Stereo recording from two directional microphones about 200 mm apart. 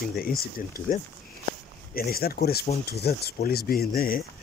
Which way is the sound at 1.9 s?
50° left (ahead or behind).